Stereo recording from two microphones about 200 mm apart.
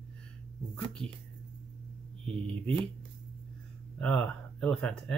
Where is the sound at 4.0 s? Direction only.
5° left (ahead or behind).